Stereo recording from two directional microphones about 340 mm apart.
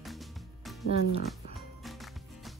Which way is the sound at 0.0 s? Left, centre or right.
Centre.